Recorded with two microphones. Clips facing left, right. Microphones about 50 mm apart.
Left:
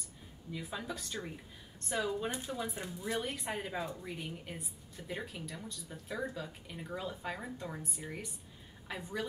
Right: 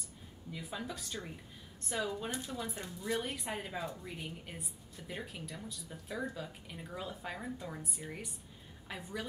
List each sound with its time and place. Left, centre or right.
0.5 s a woman's voice: centre
2.3 s a woman's voice: centre